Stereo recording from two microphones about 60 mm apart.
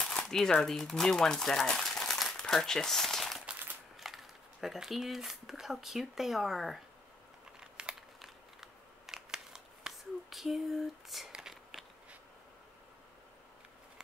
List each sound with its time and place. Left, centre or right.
0.0 s speech: centre
2.3 s crumpling: centre
3.9 s speech: centre
7.6 s crumpling: centre
8.2 s scissors: centre